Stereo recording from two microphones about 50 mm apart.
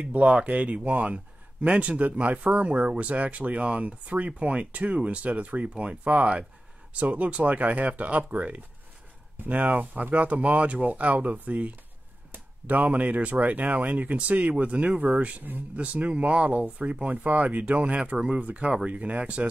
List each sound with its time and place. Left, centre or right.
0.0 s speech: right
4.3 s speech: centre
18.4 s speech: right